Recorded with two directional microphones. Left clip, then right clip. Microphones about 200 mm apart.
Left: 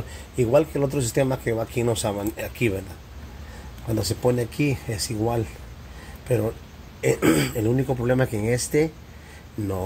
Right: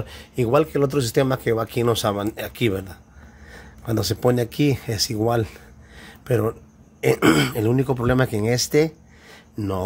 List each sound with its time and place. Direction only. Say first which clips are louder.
0.4 s speech: right 1 dB; 25° right (ahead or behind)
3.9 s speech: right 2 dB; 30° right (ahead or behind)